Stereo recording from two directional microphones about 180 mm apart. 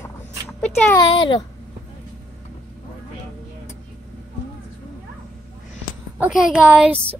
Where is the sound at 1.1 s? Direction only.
25° left (ahead or behind).